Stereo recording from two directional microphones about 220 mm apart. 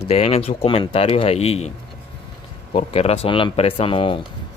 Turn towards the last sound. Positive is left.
turn(degrees=25)  # may be behind; listen again after turning